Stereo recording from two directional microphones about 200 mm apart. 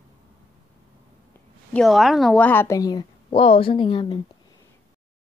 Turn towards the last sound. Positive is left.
turn(degrees=25)  # may be behind; listen again after turning